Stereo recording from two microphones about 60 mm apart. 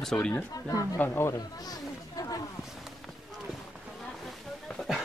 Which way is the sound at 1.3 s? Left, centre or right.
Left.